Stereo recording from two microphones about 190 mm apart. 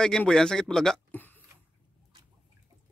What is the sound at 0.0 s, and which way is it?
Speech, 5° left (ahead or behind).